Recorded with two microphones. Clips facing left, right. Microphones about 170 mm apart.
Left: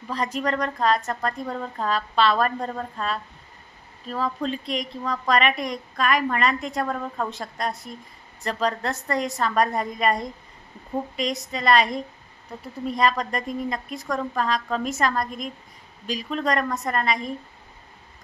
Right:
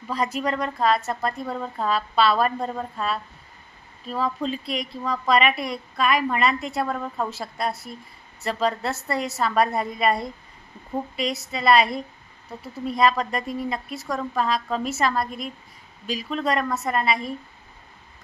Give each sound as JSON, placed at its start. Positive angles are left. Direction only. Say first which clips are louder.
{"t": 0.1, "sound": "a woman's voice", "louder": "even", "side_deg": -10}
{"t": 11.5, "sound": "a woman's voice", "louder": "right 2 dB", "side_deg": -5}